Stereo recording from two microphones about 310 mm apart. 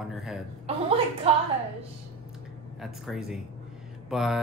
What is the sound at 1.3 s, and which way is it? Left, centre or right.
Speech, centre.